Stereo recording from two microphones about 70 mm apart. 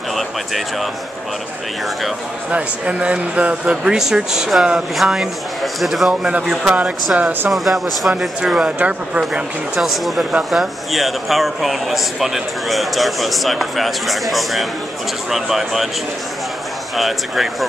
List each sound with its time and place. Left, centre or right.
2.5 s a man's voice: centre
7.2 s speech: centre
7.5 s a man's voice: centre
9.2 s a man's voice: centre
16.9 s a man's voice: centre